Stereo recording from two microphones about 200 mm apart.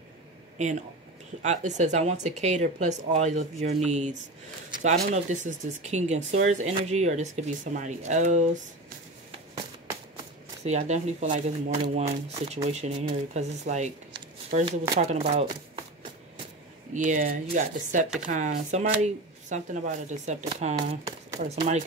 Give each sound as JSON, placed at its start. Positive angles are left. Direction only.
{"t": 0.6, "sound": "speech", "side_deg": -35}
{"t": 10.6, "sound": "speech", "side_deg": -35}
{"t": 16.9, "sound": "speech", "side_deg": -40}
{"t": 20.7, "sound": "speech", "side_deg": -15}